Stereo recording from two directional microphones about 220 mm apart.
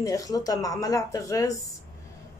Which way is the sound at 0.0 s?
15° left (ahead or behind).